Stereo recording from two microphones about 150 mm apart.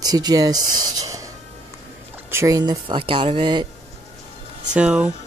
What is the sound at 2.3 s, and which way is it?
A woman's voice, 20° right (ahead or behind).